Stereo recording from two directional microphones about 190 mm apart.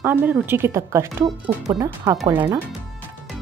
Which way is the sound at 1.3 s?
Centre (ahead or behind).